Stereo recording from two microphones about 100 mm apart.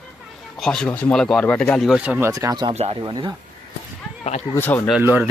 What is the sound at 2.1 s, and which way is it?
Speech, 25° right (ahead or behind).